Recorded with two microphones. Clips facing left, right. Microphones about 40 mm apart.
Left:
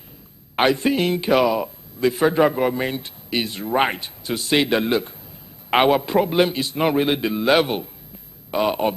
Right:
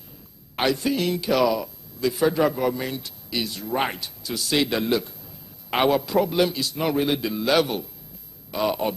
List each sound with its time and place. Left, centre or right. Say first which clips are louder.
0.6 s a man's voice: left 5 dB; left